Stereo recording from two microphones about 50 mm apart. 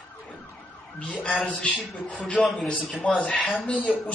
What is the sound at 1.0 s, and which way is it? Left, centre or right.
Speech, left.